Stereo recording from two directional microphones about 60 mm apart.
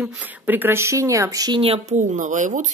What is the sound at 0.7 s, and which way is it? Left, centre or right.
Speech, right.